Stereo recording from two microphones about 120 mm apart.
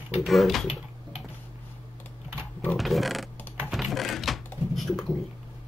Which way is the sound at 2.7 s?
Centre (ahead or behind).